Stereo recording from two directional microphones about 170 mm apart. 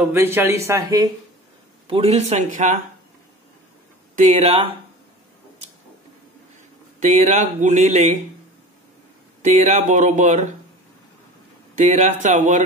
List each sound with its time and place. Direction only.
0.0 s a man's voice: 15° right (ahead or behind)
1.9 s speech: 35° right (ahead or behind)
4.1 s speech: 45° right (ahead or behind)
7.0 s speech: 45° right (ahead or behind)
9.4 s speech: 45° right (ahead or behind)
11.7 s speech: 45° right (ahead or behind)